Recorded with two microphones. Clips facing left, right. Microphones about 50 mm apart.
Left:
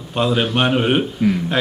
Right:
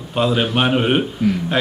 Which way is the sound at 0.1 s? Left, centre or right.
Centre.